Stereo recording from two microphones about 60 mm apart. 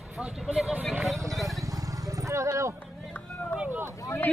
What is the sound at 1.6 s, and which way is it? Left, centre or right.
Vehicle, right.